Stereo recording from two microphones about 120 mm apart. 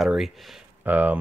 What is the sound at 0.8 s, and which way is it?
Speech, 15° right (ahead or behind).